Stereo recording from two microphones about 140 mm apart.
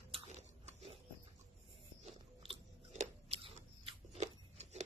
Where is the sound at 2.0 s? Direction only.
45° right (ahead or behind).